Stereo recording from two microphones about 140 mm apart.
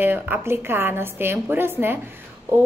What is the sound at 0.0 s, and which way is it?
A woman's voice, 15° right (ahead or behind).